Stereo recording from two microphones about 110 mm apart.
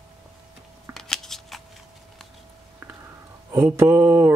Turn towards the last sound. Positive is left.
turn(degrees=-20)  # may be behind; listen again after turning